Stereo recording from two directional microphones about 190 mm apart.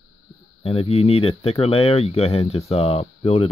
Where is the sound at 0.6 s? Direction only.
30° left (ahead or behind).